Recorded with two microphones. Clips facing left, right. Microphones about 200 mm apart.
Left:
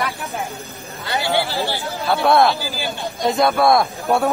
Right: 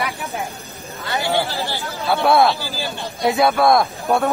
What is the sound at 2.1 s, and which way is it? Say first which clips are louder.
Speech: even; centre (ahead or behind).